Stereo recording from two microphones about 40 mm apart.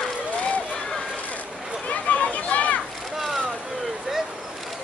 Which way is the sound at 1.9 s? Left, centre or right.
Left.